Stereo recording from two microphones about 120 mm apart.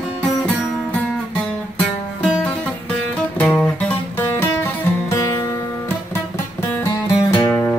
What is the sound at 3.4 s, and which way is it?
Music, 10° left (ahead or behind).